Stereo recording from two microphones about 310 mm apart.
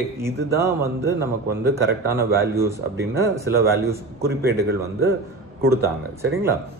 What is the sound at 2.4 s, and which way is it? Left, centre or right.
Speech, centre.